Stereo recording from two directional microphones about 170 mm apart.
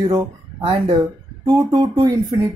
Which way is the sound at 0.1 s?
25° right (ahead or behind).